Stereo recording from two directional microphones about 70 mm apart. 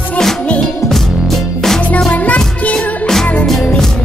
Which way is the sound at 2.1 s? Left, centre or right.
Centre.